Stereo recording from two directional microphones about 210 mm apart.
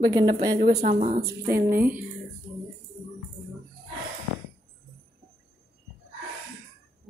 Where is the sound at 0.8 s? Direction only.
35° right (ahead or behind).